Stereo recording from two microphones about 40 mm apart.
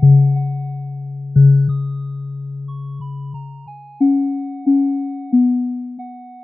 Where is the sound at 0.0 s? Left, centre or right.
Centre.